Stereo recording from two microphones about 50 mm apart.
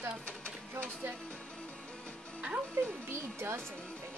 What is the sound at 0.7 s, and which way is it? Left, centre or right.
Speech, right.